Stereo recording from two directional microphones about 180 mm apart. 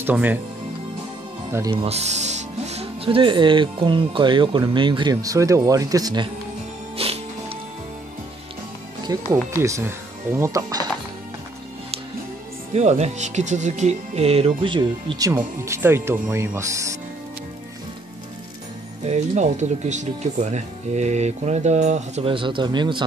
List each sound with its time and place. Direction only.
0.0 s speech: 10° right (ahead or behind)
1.5 s speech: 20° right (ahead or behind)
1.8 s speech: 35° right (ahead or behind)
7.0 s music: 35° right (ahead or behind)
9.0 s speech: 20° right (ahead or behind)
12.7 s speech: 35° right (ahead or behind); by 16.9 s 15° right (ahead or behind)
19.0 s speech: 40° right (ahead or behind)